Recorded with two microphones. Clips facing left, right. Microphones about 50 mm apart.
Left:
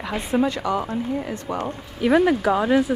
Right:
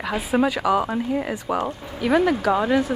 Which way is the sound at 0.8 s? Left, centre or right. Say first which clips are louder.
Right 2 dB; right.